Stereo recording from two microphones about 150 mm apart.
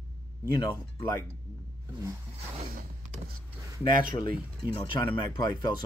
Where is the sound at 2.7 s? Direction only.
80° right.